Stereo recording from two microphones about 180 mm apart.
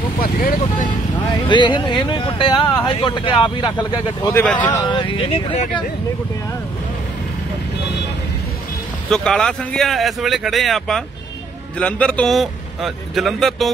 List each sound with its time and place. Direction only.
0.2 s speech: 50° left (ahead or behind)
1.5 s speech: 25° left (ahead or behind)
4.4 s speech: 10° left (ahead or behind)
4.7 s speech: 25° left (ahead or behind)
9.1 s speech: 5° left (ahead or behind)